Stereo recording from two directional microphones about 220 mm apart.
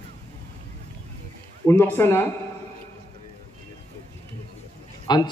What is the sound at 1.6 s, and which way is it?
Speech, 10° left (ahead or behind).